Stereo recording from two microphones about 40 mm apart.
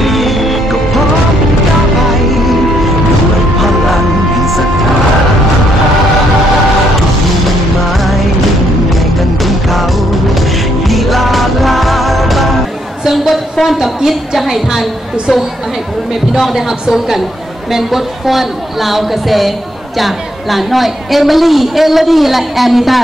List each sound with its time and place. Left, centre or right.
0.0 s music: centre
2.3 s music: centre
9.4 s music: centre
10.9 s music: centre
13.1 s a sound: centre
17.6 s a woman's voice: centre